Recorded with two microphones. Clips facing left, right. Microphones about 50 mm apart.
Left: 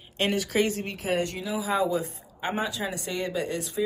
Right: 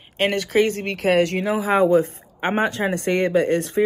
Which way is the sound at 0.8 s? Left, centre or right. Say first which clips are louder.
Right 9 dB; right.